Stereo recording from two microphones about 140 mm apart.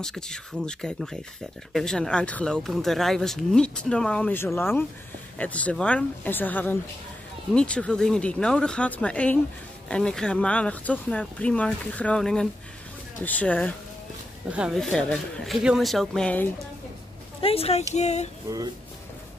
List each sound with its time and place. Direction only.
0.0 s speech: 5° left (ahead or behind)
14.5 s speech: 5° right (ahead or behind)
17.4 s speech: 45° left (ahead or behind)